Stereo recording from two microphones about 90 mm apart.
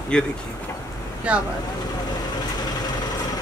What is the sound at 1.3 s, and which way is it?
Speech, 15° right (ahead or behind).